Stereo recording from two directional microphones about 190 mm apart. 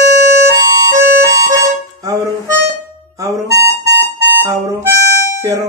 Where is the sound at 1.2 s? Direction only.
15° right (ahead or behind).